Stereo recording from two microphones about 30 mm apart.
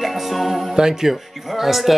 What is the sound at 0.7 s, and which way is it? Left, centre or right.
Speech, right.